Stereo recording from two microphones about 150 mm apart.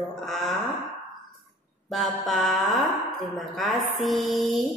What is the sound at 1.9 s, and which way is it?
Music, centre (ahead or behind).